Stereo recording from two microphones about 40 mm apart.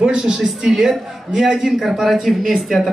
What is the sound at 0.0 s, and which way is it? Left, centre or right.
A man's voice, right.